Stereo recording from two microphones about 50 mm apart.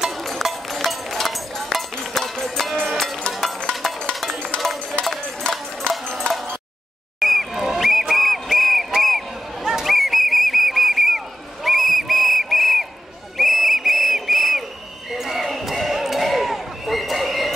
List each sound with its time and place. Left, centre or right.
0.1 s music: centre
3.7 s music: centre
4.1 s music: centre
5.0 s clip-clop: left
5.5 s music: centre
7.2 s a sound: centre
9.6 s whistle: centre
15.0 s basketball bounce: centre